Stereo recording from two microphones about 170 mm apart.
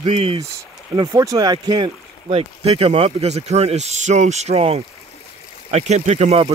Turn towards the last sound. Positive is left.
turn(degrees=-40)  # may be behind; listen again after turning